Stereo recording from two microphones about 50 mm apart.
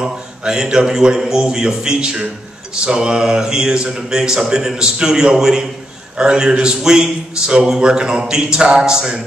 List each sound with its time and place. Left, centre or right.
0.0 s a man's voice: centre